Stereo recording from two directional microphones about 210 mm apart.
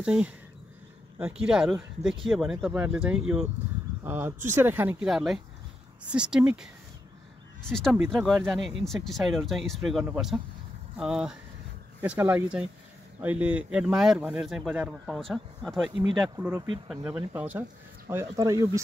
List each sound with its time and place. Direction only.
0.0 s speech: 5° right (ahead or behind)
15.9 s speech: 25° right (ahead or behind)
16.3 s speech: 10° right (ahead or behind)